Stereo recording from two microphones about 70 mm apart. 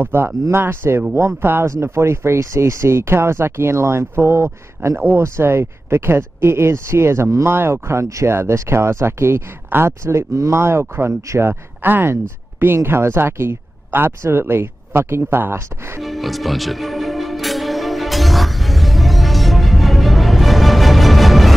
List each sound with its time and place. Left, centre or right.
0.0 s speech: right
16.0 s music: centre